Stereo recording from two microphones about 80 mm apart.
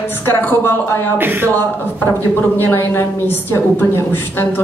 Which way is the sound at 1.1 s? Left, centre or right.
Right.